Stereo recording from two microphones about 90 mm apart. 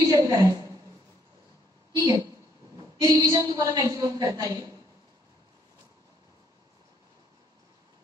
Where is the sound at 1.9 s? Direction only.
45° right (ahead or behind).